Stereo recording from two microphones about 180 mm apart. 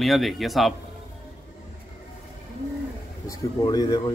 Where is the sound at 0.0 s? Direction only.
Centre (ahead or behind).